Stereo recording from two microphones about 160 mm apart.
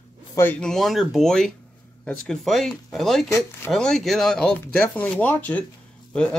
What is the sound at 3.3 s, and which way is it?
Speech, 20° left (ahead or behind).